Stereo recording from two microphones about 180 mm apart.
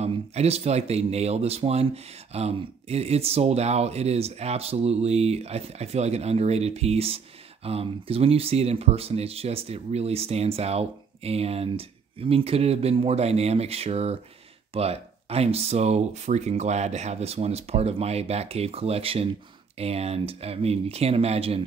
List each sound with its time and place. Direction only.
0.0 s speech: 35° right (ahead or behind)